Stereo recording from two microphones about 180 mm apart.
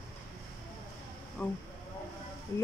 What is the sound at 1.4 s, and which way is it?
Speech, 10° left (ahead or behind).